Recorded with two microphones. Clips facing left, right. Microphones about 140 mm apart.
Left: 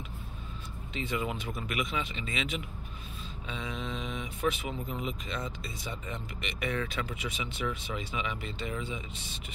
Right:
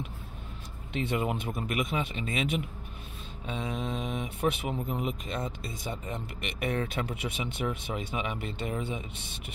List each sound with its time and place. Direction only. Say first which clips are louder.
0.9 s speech: right 4 dB; 55° right (ahead or behind)